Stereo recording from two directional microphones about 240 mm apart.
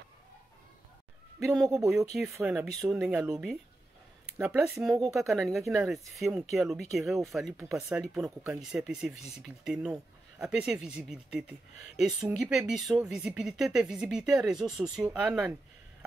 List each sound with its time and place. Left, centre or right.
1.6 s speech: centre
4.4 s speech: centre